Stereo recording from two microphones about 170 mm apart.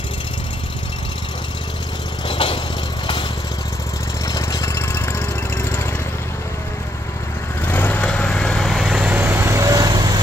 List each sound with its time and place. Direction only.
2.2 s vehicle: 30° left (ahead or behind)
4.3 s vehicle: 20° left (ahead or behind)
7.6 s vehicle: 10° left (ahead or behind); by 10.2 s 25° right (ahead or behind)